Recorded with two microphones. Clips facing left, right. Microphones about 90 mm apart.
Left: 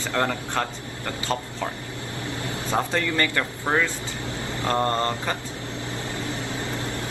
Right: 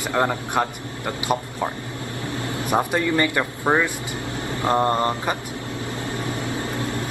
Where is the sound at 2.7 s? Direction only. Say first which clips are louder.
Right 4 dB; 15° right (ahead or behind).